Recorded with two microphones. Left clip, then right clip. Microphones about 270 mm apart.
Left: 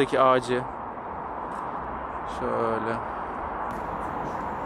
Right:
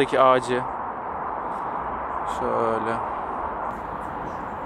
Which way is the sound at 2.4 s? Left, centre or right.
Centre.